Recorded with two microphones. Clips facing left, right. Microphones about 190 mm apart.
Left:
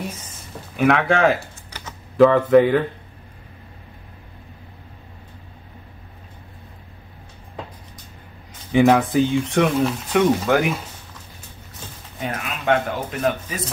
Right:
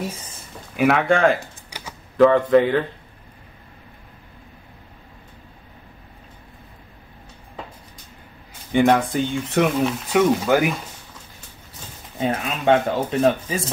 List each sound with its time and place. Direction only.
0.7 s speech: 5° right (ahead or behind)
1.4 s typing: 10° right (ahead or behind)
2.1 s speech: 5° left (ahead or behind)
8.7 s speech: 5° left (ahead or behind)
12.2 s speech: 30° right (ahead or behind)